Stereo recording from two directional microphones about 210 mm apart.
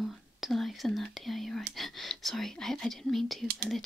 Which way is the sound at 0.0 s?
Centre (ahead or behind).